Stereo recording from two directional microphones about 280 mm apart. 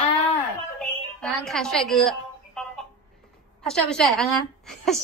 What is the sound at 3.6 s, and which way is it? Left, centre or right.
A woman's voice, centre.